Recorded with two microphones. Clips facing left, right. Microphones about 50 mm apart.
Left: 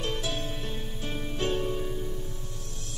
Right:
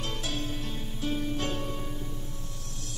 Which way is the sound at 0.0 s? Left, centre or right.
Left.